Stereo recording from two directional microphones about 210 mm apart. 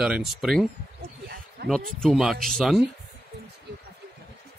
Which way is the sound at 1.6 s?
50° right (ahead or behind).